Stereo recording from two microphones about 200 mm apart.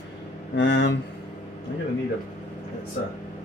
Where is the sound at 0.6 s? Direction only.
65° left (ahead or behind).